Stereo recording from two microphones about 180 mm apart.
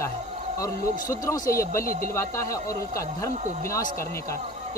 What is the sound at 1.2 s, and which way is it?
Speech, 20° left (ahead or behind).